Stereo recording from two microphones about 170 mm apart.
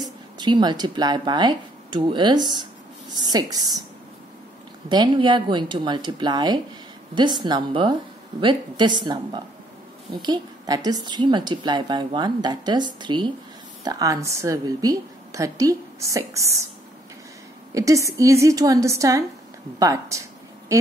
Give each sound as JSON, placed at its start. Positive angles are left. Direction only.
{"t": 0.4, "sound": "a woman's voice", "side_deg": -25}
{"t": 4.8, "sound": "a woman's voice", "side_deg": -25}
{"t": 17.7, "sound": "a woman's voice", "side_deg": -20}
{"t": 19.8, "sound": "a sound", "side_deg": -20}